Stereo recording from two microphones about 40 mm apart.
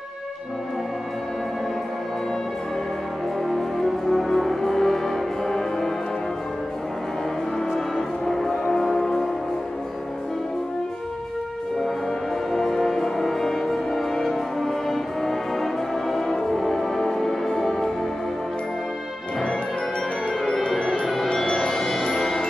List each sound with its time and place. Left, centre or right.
3.4 s brass instrument: centre
8.3 s music: centre
12.4 s music: centre
21.0 s music: centre